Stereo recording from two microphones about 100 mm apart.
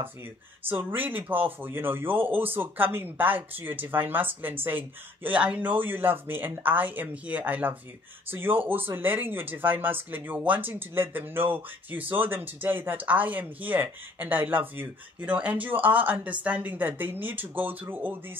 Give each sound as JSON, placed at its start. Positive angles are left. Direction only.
{"t": 0.7, "sound": "speech", "side_deg": -20}